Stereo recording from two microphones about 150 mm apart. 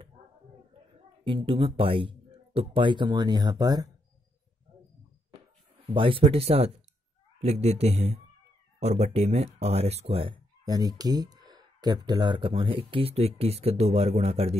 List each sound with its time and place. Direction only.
1.2 s speech: 35° right (ahead or behind)
5.9 s speech: 35° right (ahead or behind)
10.6 s speech: 25° right (ahead or behind); by 14.6 s 45° right (ahead or behind)